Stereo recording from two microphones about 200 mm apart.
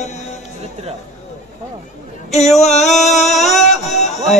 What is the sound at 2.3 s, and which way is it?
Music, 35° left (ahead or behind).